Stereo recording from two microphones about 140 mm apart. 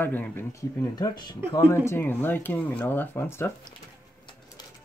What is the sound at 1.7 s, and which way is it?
Speech, 15° left (ahead or behind).